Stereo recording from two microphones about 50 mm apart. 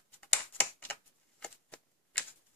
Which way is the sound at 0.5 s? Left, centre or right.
Left.